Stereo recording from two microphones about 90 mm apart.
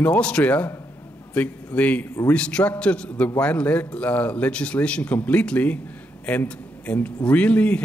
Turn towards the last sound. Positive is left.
turn(degrees=15)  # may be behind; listen again after turning